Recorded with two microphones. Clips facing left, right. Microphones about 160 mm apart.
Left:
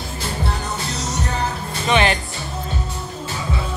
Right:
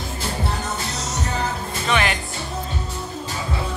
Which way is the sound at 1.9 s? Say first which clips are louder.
Left 4 dB; 25° left (ahead or behind).